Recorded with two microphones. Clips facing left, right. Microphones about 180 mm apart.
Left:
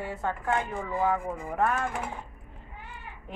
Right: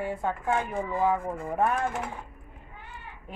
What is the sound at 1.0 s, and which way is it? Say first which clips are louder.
Speech: right 1 dB; 20° right (ahead or behind).